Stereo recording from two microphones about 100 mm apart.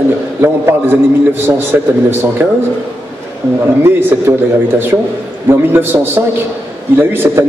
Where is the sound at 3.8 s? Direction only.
25° right (ahead or behind).